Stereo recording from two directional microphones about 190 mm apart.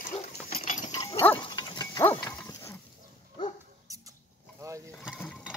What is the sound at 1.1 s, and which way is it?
Dog, 10° left (ahead or behind).